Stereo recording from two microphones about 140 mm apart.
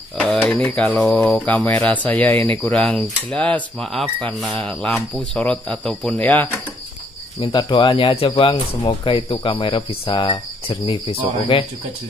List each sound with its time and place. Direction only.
0.5 s mantra: 10° left (ahead or behind)
7.3 s speech: 35° left (ahead or behind)